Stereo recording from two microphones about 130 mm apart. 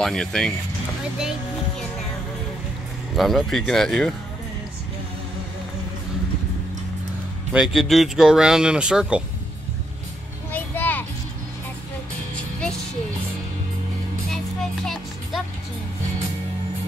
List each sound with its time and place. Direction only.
0.0 s speech: 5° left (ahead or behind)
3.2 s speech: centre (ahead or behind)
7.5 s speech: 5° right (ahead or behind)
10.5 s a sound: 15° left (ahead or behind)
14.3 s music: 5° left (ahead or behind)